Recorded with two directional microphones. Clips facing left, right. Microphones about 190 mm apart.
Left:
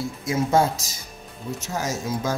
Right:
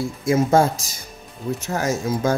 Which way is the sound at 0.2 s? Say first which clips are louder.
Right 4 dB; 50° right (ahead or behind).